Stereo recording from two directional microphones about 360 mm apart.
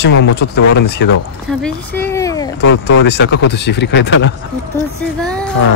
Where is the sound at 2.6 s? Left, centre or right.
Left.